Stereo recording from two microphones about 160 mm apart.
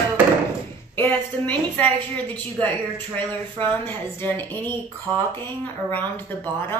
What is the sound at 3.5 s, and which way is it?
Speech, 30° right (ahead or behind).